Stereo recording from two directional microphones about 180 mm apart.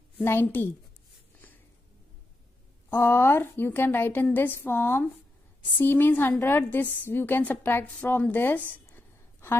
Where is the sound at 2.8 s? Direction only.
15° left (ahead or behind).